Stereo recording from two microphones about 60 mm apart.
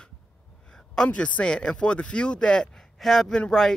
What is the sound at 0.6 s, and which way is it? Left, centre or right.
A man's voice, centre.